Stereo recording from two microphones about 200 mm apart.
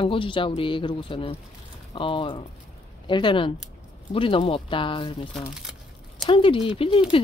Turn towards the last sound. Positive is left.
turn(degrees=25)  # may be behind; listen again after turning